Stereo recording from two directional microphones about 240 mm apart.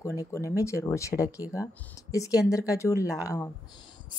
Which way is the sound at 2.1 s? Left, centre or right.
Centre.